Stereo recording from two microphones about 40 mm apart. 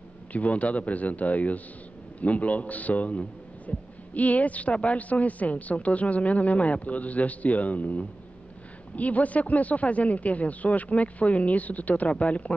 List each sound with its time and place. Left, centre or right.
0.3 s a woman's voice: left